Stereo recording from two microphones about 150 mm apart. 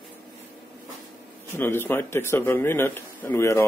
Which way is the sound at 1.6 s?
15° left (ahead or behind).